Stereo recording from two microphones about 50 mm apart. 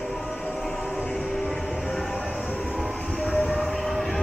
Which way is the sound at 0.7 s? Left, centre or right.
Left.